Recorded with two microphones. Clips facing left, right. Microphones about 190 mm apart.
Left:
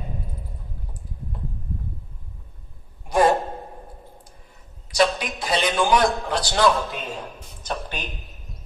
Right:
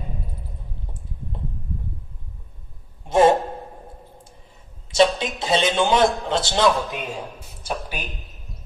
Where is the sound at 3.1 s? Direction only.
25° right (ahead or behind).